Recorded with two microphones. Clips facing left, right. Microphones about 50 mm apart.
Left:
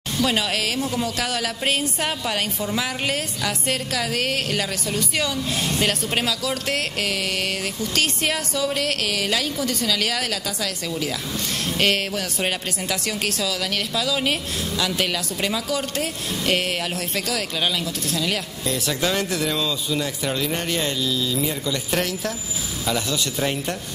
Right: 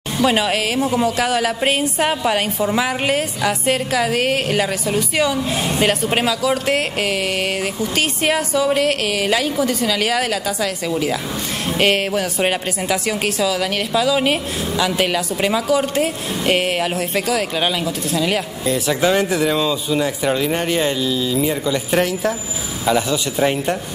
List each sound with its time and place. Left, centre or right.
0.2 s speech: centre